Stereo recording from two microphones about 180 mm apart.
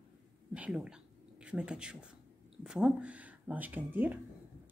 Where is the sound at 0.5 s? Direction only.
5° right (ahead or behind).